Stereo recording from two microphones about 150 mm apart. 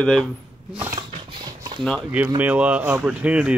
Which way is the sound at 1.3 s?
30° right (ahead or behind).